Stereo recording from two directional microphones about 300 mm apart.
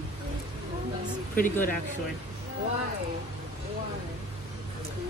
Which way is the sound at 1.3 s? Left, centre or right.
Left.